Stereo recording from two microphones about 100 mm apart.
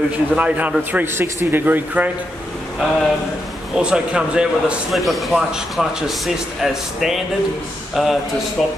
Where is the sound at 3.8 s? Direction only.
10° right (ahead or behind).